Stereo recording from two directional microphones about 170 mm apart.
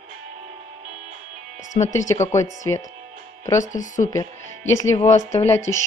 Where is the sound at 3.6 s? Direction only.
50° left (ahead or behind).